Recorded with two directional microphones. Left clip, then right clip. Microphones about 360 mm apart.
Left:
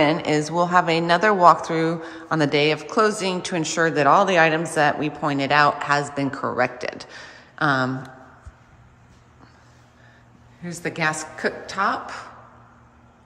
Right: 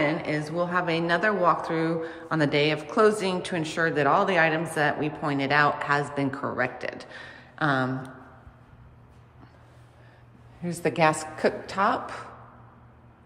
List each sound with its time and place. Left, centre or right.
0.0 s a woman's voice: centre
10.6 s a woman's voice: centre